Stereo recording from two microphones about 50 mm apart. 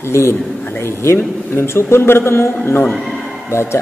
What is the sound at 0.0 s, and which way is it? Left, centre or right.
Speech, left.